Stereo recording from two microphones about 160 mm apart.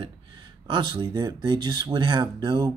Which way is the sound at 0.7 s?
30° right (ahead or behind).